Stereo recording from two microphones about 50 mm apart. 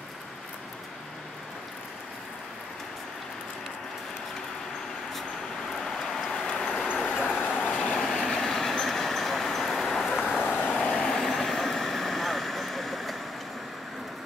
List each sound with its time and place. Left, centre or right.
5.7 s vehicle: centre
7.1 s dog: left
7.6 s vehicle: left
8.0 s train: centre
10.4 s vehicle: left
10.8 s vehicle: centre